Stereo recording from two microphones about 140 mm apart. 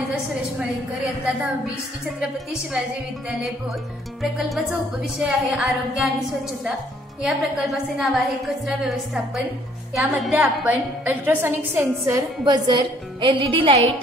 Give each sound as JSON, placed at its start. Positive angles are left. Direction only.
{"t": 4.2, "sound": "a woman's voice", "side_deg": 0}
{"t": 7.2, "sound": "a woman's voice", "side_deg": -5}